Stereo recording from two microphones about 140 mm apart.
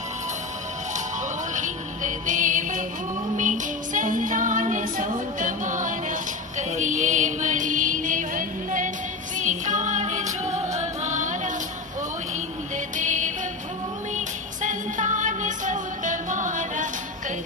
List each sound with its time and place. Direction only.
1.5 s music: 65° right (ahead or behind)
12.9 s music: 65° right (ahead or behind)